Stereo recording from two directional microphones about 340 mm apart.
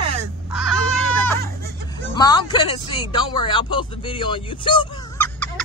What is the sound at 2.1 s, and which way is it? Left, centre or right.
Speech, centre.